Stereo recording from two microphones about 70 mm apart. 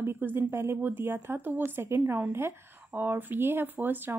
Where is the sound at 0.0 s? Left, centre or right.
Right.